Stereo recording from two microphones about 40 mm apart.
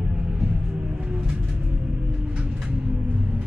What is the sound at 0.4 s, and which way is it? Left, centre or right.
Music, right.